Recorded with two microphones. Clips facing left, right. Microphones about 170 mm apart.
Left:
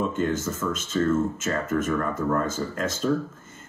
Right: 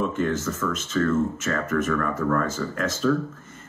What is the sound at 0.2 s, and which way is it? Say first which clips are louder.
Speech: right 1 dB; 30° left (ahead or behind).